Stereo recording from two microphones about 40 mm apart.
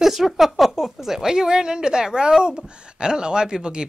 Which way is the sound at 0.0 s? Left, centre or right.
Centre.